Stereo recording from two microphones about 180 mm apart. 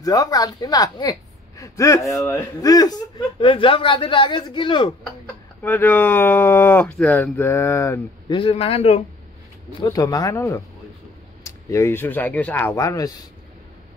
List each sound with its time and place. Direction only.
0.0 s speech: 20° left (ahead or behind)
5.6 s speech: 10° left (ahead or behind)
8.3 s a man's voice: 30° left (ahead or behind)
9.8 s speech: 20° left (ahead or behind)